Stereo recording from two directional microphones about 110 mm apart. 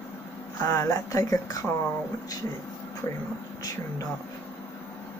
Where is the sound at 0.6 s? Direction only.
35° left (ahead or behind).